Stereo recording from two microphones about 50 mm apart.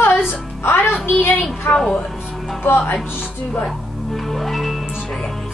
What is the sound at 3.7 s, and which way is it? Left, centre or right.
Music, centre.